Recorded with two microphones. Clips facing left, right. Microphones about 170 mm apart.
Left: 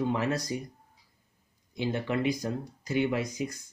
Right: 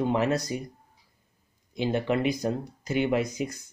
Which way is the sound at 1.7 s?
20° right (ahead or behind).